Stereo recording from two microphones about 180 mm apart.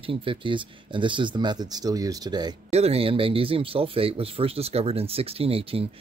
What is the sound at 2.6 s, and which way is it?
Speech, 35° right (ahead or behind).